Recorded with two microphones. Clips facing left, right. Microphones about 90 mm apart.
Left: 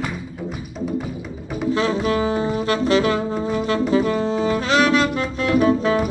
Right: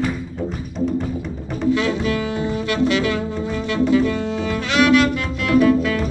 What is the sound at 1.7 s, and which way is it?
Saxophone, 35° left (ahead or behind).